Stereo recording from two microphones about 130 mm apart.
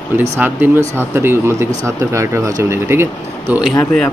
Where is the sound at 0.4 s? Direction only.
15° right (ahead or behind).